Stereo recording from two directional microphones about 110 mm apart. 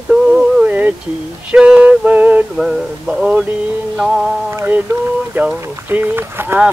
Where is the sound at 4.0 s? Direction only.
5° right (ahead or behind).